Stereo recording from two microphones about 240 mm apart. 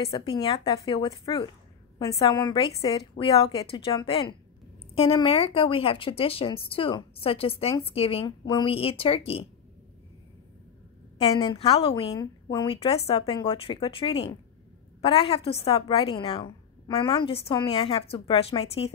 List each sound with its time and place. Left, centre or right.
0.1 s a woman's voice: centre
11.1 s speech: left